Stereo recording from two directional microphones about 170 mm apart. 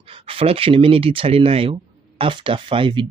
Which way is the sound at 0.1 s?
35° right (ahead or behind).